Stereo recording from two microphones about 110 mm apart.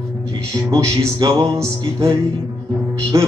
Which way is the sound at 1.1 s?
35° right (ahead or behind).